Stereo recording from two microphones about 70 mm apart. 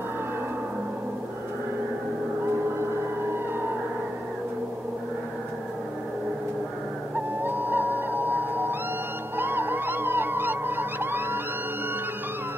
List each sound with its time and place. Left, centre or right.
7.2 s owl: right
9.4 s police car: right